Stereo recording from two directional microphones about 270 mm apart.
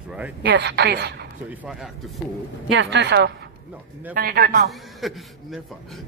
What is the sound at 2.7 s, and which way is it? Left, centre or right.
Speech, right.